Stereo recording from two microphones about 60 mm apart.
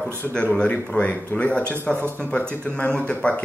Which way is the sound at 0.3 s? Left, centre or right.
Centre.